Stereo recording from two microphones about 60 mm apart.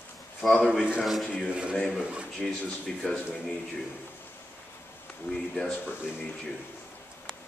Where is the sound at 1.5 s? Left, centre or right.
Centre.